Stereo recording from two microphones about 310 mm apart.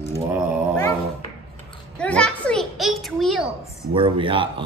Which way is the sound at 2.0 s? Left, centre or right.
Centre.